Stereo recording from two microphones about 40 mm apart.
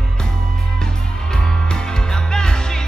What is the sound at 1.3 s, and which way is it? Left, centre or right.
Music, centre.